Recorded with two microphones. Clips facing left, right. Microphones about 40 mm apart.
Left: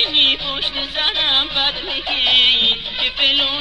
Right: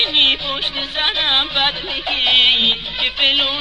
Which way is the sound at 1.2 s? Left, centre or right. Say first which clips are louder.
Right 2 dB; right.